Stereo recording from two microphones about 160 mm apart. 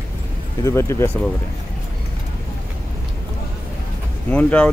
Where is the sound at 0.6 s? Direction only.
15° left (ahead or behind).